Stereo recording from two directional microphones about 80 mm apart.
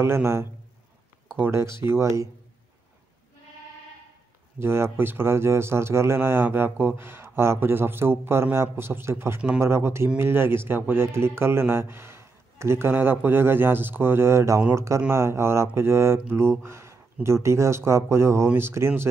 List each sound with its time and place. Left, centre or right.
0.0 s speech: right
4.6 s a man's voice: right